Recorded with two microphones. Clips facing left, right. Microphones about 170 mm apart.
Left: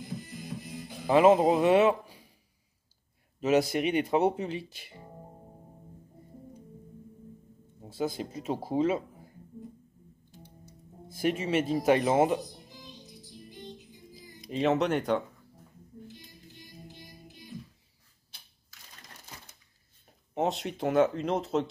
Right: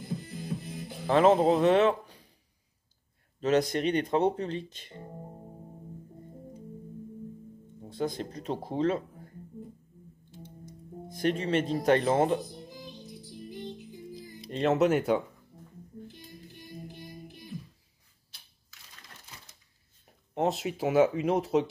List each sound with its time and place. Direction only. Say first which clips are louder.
1.0 s speech: left 1 dB; 10° left (ahead or behind)
3.3 s speech: left 1 dB; 5° left (ahead or behind)
7.8 s speech: even; 5° left (ahead or behind)
11.1 s speech: right 1 dB; 5° left (ahead or behind)
14.5 s speech: right 2 dB; centre (ahead or behind)
16.5 s music: right 5 dB; 55° right (ahead or behind)
20.3 s speech: right 1 dB; centre (ahead or behind)